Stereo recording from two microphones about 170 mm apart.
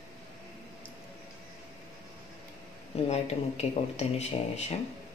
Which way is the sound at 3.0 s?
40° left (ahead or behind).